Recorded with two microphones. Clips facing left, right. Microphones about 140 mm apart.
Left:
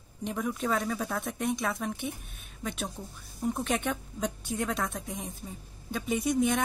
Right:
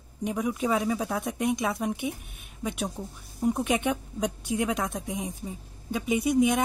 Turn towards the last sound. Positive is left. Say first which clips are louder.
# right 4 dB
turn(degrees=-10)  # may be behind; listen again after turning